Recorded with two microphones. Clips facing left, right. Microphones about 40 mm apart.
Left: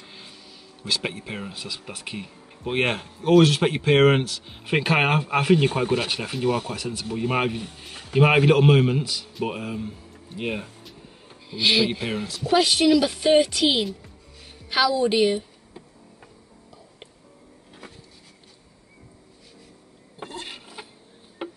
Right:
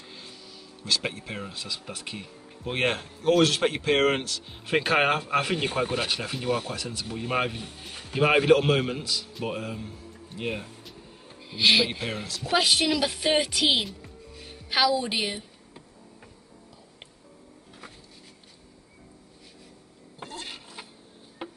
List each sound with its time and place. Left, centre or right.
0.0 s a sound: centre
0.8 s speech: centre
10.8 s music: centre
12.4 s speech: centre
20.2 s a sound: centre
21.4 s music: left